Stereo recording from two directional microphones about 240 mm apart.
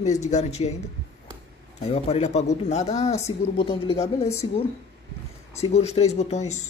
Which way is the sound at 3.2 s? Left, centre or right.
Centre.